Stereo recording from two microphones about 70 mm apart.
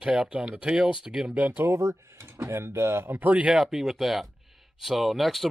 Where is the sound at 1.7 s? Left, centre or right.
Right.